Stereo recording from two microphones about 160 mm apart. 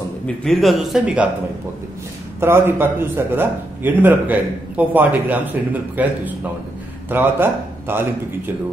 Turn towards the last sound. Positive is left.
turn(degrees=-15)  # may be behind; listen again after turning